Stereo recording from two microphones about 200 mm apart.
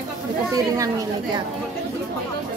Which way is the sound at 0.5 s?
15° right (ahead or behind).